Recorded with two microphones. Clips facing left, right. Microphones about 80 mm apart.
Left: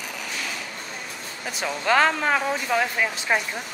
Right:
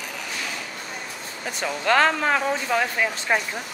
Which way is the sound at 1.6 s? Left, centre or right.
Centre.